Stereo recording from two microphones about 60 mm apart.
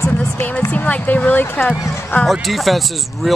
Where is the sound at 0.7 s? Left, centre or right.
Left.